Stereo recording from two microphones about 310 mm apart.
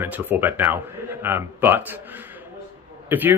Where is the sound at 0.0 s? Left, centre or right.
Centre.